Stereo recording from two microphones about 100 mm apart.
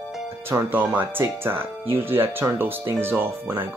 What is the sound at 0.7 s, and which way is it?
Speech, 20° right (ahead or behind).